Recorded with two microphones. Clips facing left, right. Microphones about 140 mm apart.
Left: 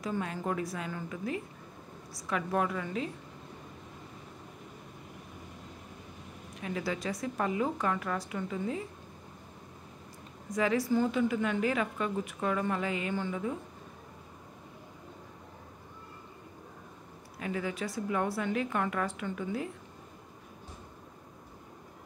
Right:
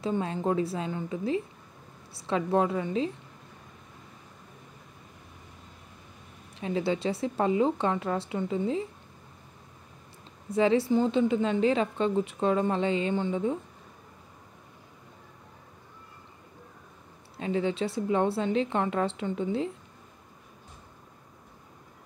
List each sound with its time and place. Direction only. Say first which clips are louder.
0.0 s a woman's voice: right 5 dB; 25° right (ahead or behind)
6.6 s a woman's voice: right 6 dB; 25° right (ahead or behind)
10.5 s a woman's voice: right 5 dB; 25° right (ahead or behind)
17.4 s a woman's voice: right 6 dB; 25° right (ahead or behind)